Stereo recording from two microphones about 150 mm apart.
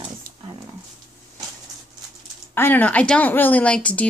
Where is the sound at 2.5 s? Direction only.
15° left (ahead or behind).